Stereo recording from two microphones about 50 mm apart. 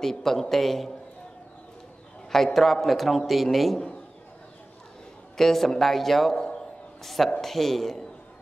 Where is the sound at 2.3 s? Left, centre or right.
Centre.